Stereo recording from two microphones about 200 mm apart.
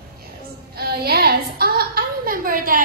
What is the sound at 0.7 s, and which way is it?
A woman's voice, 50° right (ahead or behind).